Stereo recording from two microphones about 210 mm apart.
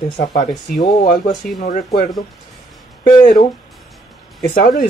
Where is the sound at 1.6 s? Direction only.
40° left (ahead or behind).